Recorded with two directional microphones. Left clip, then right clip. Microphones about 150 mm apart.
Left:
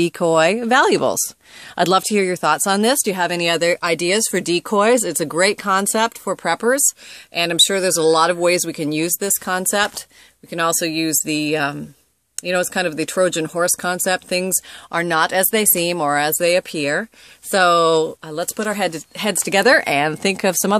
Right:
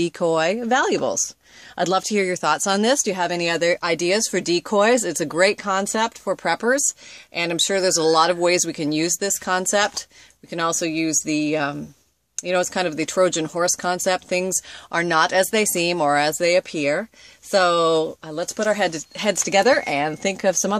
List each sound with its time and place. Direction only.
0.0 s speech: 40° left (ahead or behind)